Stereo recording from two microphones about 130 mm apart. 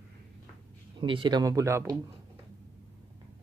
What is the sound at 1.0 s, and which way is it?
Speech, 40° right (ahead or behind).